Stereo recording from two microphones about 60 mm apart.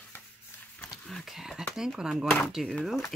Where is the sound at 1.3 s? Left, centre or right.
Centre.